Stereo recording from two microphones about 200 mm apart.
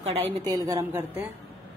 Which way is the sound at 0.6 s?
15° right (ahead or behind).